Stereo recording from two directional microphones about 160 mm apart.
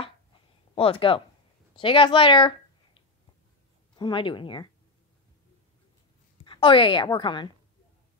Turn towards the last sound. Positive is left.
turn(degrees=30)  # may be behind; listen again after turning